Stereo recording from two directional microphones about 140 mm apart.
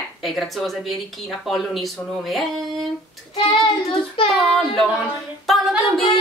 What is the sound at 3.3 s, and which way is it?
Child singing, 45° left (ahead or behind).